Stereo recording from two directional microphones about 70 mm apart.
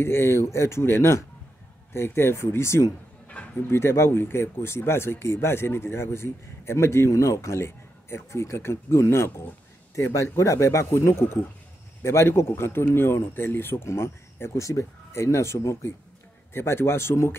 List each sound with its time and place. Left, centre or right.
0.0 s a man's voice: left